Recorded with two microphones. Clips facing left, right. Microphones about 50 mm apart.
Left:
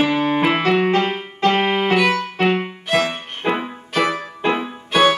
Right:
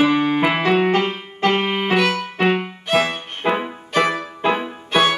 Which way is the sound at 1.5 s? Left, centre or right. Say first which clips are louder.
Left 2 dB; centre.